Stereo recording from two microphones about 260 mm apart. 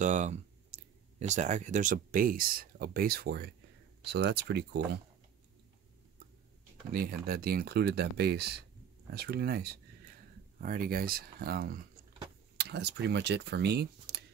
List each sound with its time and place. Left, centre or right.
0.0 s clicking: right
1.2 s speech: right
6.9 s speech: right